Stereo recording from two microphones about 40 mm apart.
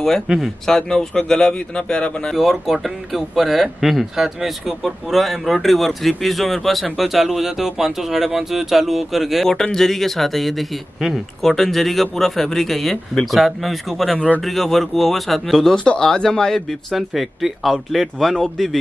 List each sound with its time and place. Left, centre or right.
0.4 s speech: centre
2.3 s speech: centre
9.5 s speech: centre
14.1 s speech: left
14.4 s speech: centre
16.0 s speech: centre
16.9 s speech: centre